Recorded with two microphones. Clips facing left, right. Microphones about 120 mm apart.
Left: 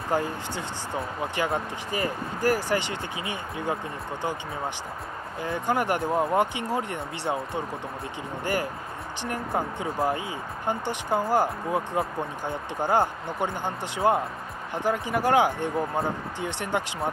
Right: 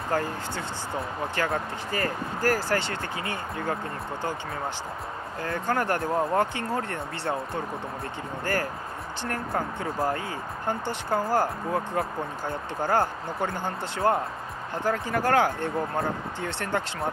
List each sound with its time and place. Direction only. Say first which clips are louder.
0.1 s speech: left 1 dB; 15° left (ahead or behind)
5.4 s speech: left 1 dB; 15° left (ahead or behind)
9.2 s speech: left 1 dB; 15° left (ahead or behind)